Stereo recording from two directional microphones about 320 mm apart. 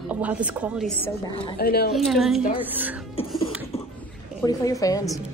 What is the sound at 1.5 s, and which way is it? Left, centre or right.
Speech, left.